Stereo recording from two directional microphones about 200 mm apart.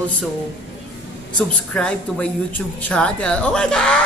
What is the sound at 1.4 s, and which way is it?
A woman's voice, 5° left (ahead or behind).